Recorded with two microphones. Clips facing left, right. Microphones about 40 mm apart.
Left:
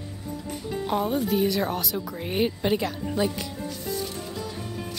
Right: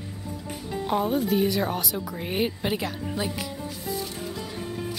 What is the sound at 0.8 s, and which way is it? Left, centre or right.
Speech, centre.